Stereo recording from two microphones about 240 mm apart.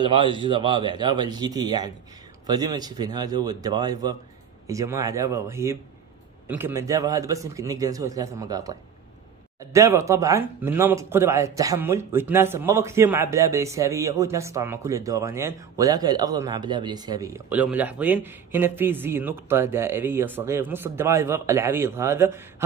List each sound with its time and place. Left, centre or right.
0.0 s speech: right